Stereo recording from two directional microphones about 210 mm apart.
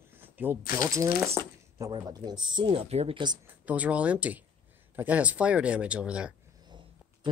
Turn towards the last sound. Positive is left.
turn(degrees=-20)  # may be behind; listen again after turning